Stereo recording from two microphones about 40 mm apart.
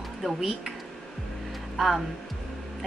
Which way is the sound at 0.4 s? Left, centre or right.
Centre.